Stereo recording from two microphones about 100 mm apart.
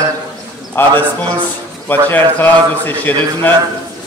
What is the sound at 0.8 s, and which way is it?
A man's voice, 20° left (ahead or behind).